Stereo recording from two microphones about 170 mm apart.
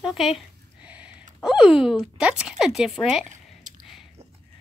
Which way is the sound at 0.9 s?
5° right (ahead or behind).